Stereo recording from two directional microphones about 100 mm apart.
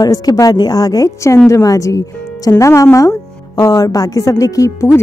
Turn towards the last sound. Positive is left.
turn(degrees=30)  # may be behind; listen again after turning